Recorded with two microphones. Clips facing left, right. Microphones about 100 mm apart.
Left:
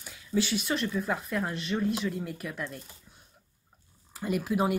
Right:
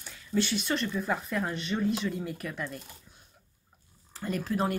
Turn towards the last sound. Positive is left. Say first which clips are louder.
# left 2 dB
turn(degrees=10)  # may be behind; listen again after turning